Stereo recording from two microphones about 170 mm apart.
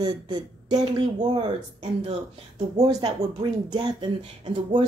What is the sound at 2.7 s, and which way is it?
Speech, 20° right (ahead or behind).